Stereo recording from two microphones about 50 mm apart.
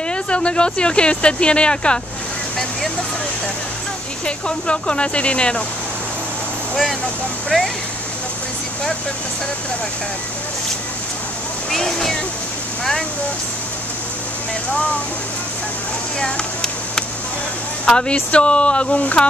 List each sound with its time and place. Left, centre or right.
0.1 s speech: left
4.5 s speech: left
7.5 s speech: centre
11.7 s speech: centre
17.8 s speech: centre